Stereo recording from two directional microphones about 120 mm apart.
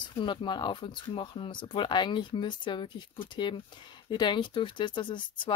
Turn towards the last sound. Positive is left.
turn(degrees=40)  # may be behind; listen again after turning